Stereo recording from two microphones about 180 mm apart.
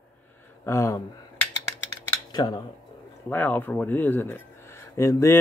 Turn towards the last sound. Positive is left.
turn(degrees=15)  # may be behind; listen again after turning